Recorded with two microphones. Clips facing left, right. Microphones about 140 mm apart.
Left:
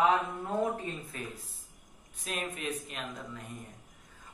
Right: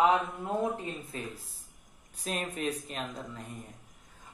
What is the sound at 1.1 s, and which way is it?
A woman's voice, 30° right (ahead or behind).